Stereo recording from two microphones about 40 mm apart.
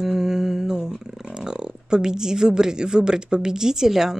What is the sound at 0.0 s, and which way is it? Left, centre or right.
A woman's voice, centre.